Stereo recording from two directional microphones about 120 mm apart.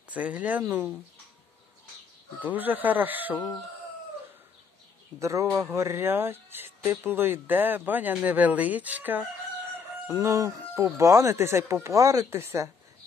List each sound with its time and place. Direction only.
0.1 s speech: 10° right (ahead or behind)
2.4 s speech: 15° right (ahead or behind)
5.2 s speech: 25° right (ahead or behind)
10.0 s speech: 25° right (ahead or behind)